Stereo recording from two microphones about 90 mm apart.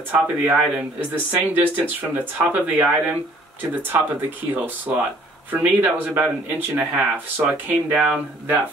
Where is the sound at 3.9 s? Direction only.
30° right (ahead or behind).